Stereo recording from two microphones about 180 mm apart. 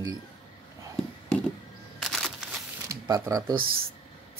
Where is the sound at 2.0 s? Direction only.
Centre (ahead or behind).